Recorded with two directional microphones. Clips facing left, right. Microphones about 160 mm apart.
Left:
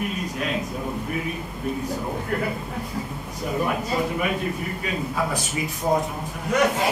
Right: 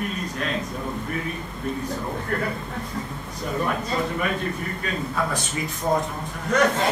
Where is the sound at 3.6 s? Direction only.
15° left (ahead or behind).